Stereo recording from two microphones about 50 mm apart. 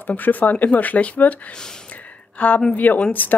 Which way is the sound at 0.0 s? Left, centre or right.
Left.